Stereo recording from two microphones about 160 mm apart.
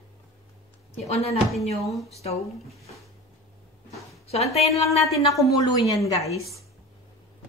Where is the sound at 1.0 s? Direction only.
40° left (ahead or behind).